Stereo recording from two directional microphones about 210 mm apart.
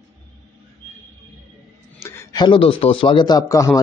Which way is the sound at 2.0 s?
10° left (ahead or behind).